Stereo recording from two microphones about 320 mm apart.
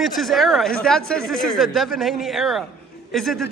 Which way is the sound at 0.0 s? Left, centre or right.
Centre.